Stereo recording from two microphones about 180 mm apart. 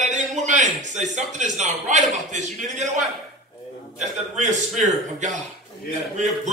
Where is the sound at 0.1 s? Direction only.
40° right (ahead or behind).